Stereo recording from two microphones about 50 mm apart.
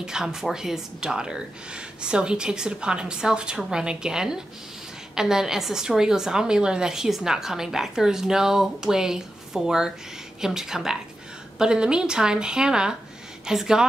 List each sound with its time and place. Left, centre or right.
0.0 s a woman's voice: centre